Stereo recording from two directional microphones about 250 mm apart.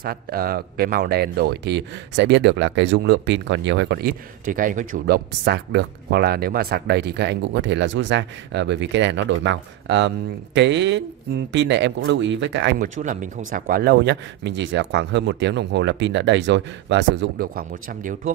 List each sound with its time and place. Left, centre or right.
0.0 s speech: right